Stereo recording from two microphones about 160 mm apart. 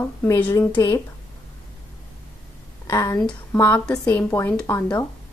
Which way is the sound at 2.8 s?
20° left (ahead or behind).